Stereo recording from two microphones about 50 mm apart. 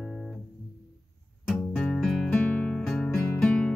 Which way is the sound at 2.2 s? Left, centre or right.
Left.